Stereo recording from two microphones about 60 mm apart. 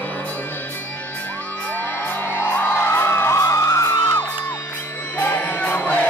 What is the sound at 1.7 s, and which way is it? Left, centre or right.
Music, left.